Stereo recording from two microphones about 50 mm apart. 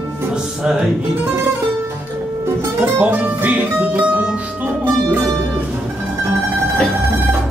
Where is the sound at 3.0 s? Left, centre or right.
Right.